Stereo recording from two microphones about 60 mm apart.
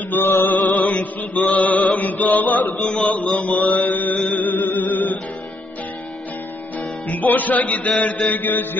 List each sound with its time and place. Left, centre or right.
0.1 s music: left
0.5 s music: left
1.6 s chant: left
2.0 s music: left
2.9 s mantra: centre
3.3 s mantra: left
4.3 s music: left
7.1 s music: left